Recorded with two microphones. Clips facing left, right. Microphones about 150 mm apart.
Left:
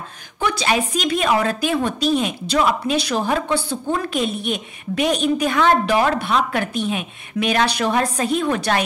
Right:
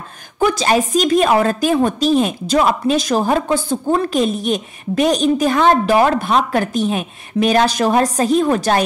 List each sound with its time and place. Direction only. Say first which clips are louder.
0.4 s a woman's voice: right 5 dB; 40° right (ahead or behind)